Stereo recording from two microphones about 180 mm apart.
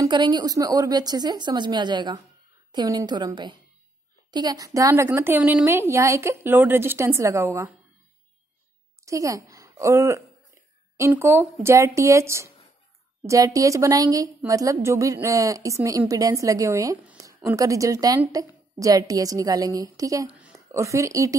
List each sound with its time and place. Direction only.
0.0 s a woman's voice: 25° right (ahead or behind)
9.0 s a woman's voice: 20° right (ahead or behind)
20.2 s a sound: 5° right (ahead or behind)
20.5 s speech: 15° right (ahead or behind)